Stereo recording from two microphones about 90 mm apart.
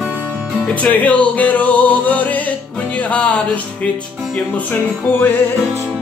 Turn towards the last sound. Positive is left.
turn(degrees=20)  # may be behind; listen again after turning